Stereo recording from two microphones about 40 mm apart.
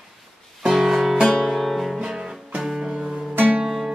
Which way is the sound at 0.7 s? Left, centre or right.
Centre.